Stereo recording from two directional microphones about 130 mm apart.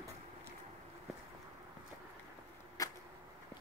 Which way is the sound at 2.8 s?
25° left (ahead or behind).